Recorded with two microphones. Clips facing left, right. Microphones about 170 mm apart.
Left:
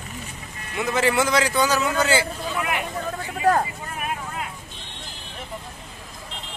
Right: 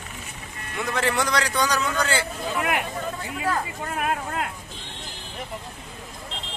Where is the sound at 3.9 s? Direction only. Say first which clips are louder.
Right 4 dB; 70° right (ahead or behind).